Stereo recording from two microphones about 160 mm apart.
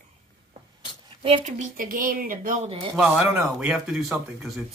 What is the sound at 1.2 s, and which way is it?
Speech, 40° right (ahead or behind).